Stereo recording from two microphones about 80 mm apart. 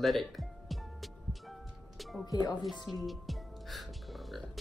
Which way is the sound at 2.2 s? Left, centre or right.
Left.